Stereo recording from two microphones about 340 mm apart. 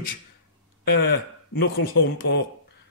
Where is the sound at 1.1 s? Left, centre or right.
Left.